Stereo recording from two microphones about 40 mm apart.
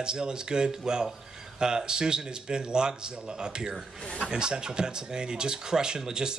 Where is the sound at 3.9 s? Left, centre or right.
Left.